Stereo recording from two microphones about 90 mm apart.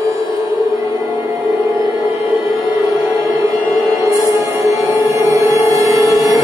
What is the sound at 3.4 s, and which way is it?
Music, 40° right (ahead or behind).